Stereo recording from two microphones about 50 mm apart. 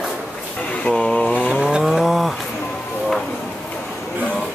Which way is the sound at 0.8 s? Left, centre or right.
Left.